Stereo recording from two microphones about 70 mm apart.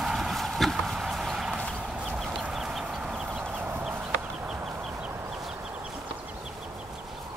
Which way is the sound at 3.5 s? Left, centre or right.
Right.